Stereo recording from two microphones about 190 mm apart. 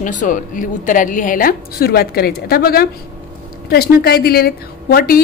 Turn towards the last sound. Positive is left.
turn(degrees=50)  # may be behind; listen again after turning